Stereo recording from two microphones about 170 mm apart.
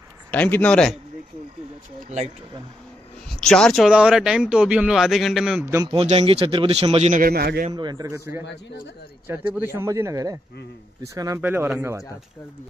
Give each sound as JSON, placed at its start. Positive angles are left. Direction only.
{"t": 0.3, "sound": "speech", "side_deg": 10}
{"t": 2.0, "sound": "speech", "side_deg": -40}
{"t": 3.3, "sound": "speech", "side_deg": 5}
{"t": 5.9, "sound": "speech", "side_deg": -35}
{"t": 7.2, "sound": "a man's voice", "side_deg": -60}
{"t": 7.7, "sound": "a man's voice", "side_deg": -25}